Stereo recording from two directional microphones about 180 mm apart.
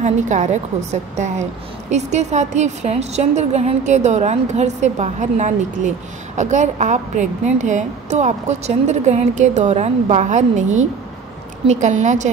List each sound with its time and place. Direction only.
0.0 s a woman's voice: 40° right (ahead or behind)